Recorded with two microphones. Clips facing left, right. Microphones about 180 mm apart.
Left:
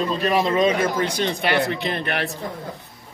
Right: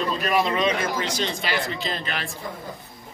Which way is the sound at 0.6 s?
55° left (ahead or behind).